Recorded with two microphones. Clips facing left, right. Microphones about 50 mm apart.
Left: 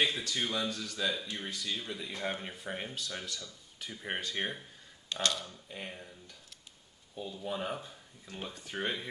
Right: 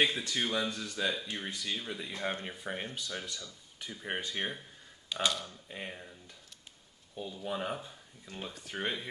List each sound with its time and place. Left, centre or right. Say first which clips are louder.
0.0 s speech: right 2 dB; right
1.7 s speech: even; centre
5.7 s speech: right 2 dB; centre
7.2 s speech: even; centre